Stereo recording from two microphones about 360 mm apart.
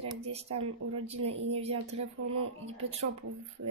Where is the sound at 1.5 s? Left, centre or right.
Centre.